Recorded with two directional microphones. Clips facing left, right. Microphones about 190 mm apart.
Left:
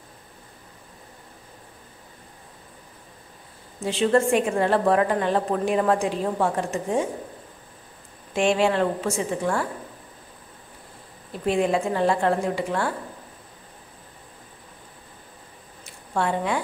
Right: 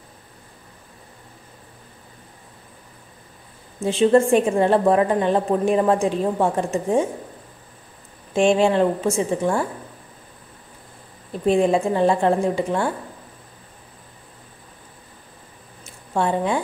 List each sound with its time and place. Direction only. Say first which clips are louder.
3.8 s a woman's voice: right 5 dB; 25° right (ahead or behind)
8.4 s a woman's voice: right 4 dB; 25° right (ahead or behind)
11.5 s a woman's voice: right 4 dB; 25° right (ahead or behind)
15.8 s a sound: right 3 dB; 25° right (ahead or behind)